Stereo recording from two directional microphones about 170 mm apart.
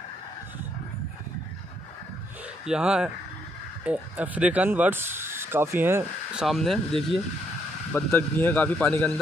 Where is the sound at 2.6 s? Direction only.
5° right (ahead or behind).